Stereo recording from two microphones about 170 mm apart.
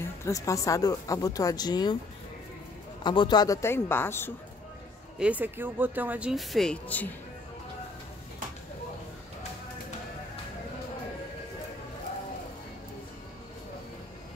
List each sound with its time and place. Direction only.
0.0 s speech: 15° left (ahead or behind)
3.0 s a man's voice: 25° left (ahead or behind)
5.2 s speech: 10° right (ahead or behind); by 7.1 s 10° left (ahead or behind)